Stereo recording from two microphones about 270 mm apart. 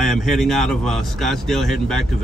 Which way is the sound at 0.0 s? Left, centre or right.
Centre.